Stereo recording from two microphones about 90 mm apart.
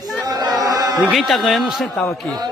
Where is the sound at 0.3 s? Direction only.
45° right (ahead or behind).